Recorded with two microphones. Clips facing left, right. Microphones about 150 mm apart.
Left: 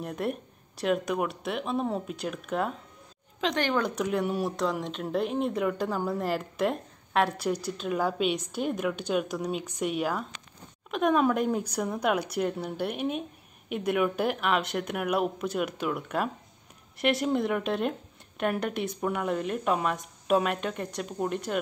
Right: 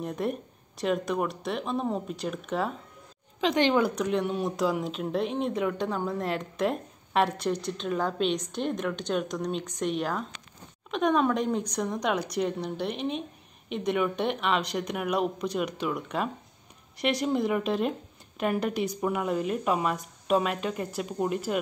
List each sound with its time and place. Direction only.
0.0 s speech: centre (ahead or behind)
3.5 s speech: 15° right (ahead or behind)
3.8 s speech: 5° left (ahead or behind)